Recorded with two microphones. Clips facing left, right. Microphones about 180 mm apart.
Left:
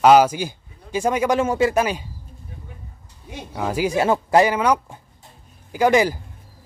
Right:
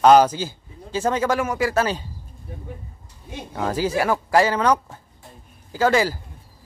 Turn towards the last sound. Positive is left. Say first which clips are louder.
# left 2 dB
turn(degrees=15)  # may be behind; listen again after turning